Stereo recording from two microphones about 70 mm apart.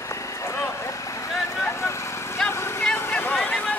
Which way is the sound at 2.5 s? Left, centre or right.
Left.